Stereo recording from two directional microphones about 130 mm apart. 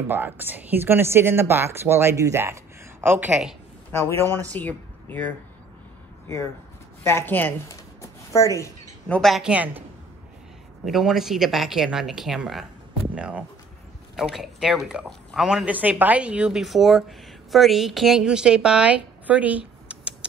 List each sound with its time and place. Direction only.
0.1 s speech: 15° right (ahead or behind)
3.9 s a man's voice: 20° left (ahead or behind)
7.0 s speech: 20° left (ahead or behind)
9.1 s speech: centre (ahead or behind)
10.9 s a woman's voice: 5° right (ahead or behind)